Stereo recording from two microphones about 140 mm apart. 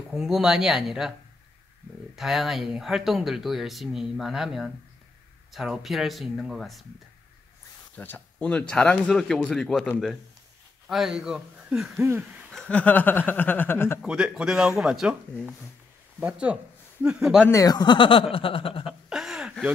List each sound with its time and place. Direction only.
0.1 s speech: 5° right (ahead or behind)
2.1 s speech: centre (ahead or behind)
7.9 s speech: 10° left (ahead or behind)
10.9 s speech: centre (ahead or behind); by 13.9 s 15° left (ahead or behind)
14.0 s speech: 5° right (ahead or behind)
17.5 s speech: 25° left (ahead or behind)
18.9 s a sound: 5° right (ahead or behind)